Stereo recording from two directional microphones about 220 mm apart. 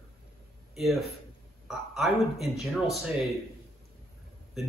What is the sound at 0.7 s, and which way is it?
Speech, centre (ahead or behind).